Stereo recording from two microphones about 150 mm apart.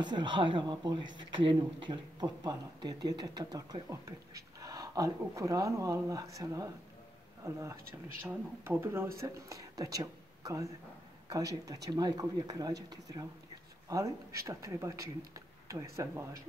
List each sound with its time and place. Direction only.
0.0 s speech: 30° right (ahead or behind)